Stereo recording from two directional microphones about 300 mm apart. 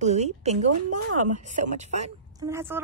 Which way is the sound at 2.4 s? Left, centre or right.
Centre.